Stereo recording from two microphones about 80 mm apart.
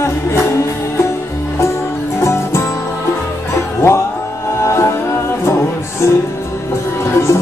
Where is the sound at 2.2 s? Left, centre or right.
Left.